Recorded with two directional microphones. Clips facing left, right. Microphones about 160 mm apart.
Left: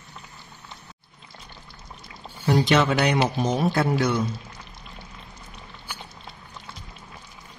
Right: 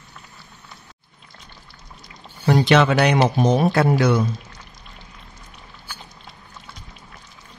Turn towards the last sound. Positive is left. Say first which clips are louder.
# left 1 dB
turn(degrees=15)  # may be behind; listen again after turning